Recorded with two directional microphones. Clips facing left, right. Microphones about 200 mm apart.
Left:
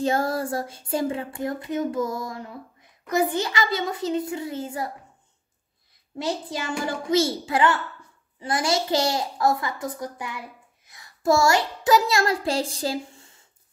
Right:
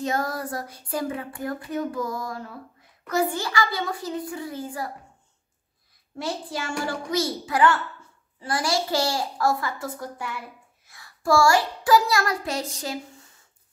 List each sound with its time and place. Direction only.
0.0 s child singing: 30° left (ahead or behind)
6.1 s child singing: 20° left (ahead or behind)